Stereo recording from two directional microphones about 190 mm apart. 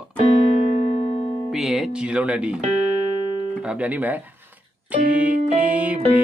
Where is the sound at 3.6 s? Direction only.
5° right (ahead or behind).